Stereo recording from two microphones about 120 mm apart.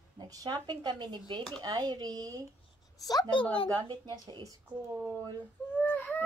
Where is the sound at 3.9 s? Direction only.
35° right (ahead or behind).